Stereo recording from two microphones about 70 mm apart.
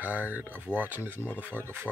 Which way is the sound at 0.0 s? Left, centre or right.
Right.